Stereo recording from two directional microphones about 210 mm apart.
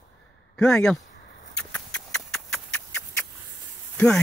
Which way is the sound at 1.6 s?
5° left (ahead or behind).